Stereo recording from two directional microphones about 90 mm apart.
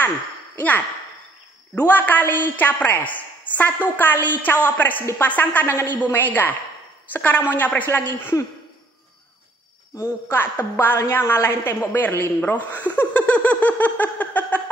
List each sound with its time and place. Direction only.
0.6 s a woman's voice: 20° left (ahead or behind)
10.3 s a woman's voice: 25° left (ahead or behind)